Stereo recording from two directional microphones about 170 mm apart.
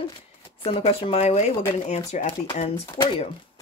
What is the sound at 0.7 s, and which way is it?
Speech, 35° left (ahead or behind).